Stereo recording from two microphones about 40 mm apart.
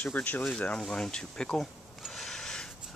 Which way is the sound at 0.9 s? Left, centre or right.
Centre.